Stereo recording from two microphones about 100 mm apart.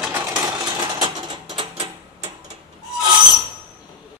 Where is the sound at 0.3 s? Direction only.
40° right (ahead or behind).